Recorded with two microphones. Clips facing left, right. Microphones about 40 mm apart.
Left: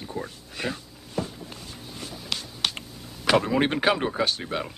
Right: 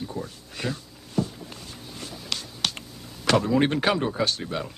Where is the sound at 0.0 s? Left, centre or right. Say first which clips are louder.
Even; centre.